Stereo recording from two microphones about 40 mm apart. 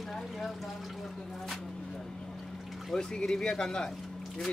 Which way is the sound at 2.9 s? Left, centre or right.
Centre.